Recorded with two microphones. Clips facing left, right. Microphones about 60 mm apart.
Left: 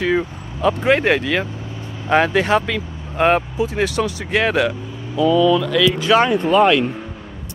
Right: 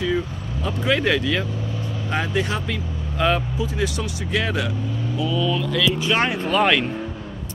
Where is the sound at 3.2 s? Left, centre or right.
Left.